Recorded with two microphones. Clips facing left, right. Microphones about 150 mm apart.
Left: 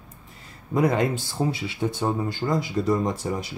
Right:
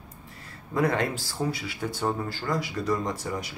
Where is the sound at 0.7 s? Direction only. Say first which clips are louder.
Left 4 dB; 20° left (ahead or behind).